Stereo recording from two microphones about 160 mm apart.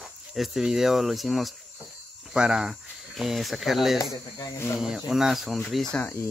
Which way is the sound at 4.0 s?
20° left (ahead or behind).